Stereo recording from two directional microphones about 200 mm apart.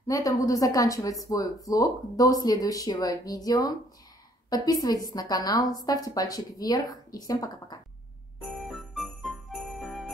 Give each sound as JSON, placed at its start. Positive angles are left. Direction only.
{"t": 0.0, "sound": "a woman's voice", "side_deg": 15}
{"t": 8.4, "sound": "jingle bell", "side_deg": 0}